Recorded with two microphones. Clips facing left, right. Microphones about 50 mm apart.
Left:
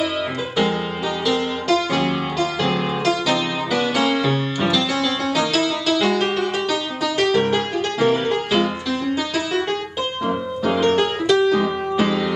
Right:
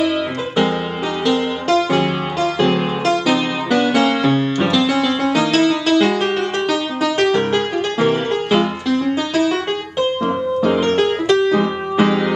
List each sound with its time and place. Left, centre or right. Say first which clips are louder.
1.2 s music: right 4 dB; centre